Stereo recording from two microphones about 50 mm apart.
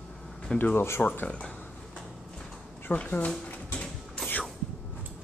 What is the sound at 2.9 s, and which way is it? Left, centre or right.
Speech, left.